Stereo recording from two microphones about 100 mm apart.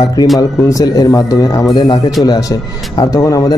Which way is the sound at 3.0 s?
35° left (ahead or behind).